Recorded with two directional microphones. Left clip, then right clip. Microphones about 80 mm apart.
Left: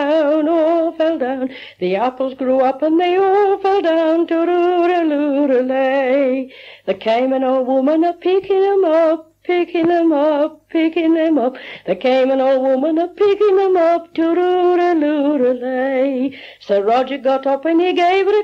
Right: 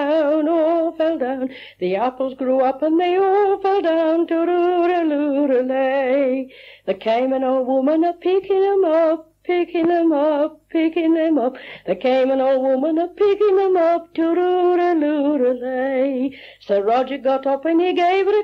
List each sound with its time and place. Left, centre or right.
0.0 s humming: right
6.9 s speech: right